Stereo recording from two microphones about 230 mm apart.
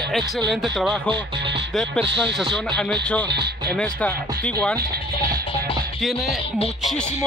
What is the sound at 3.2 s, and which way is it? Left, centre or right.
Speech, right.